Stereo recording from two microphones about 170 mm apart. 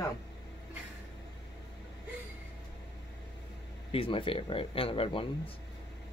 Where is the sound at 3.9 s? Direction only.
30° left (ahead or behind).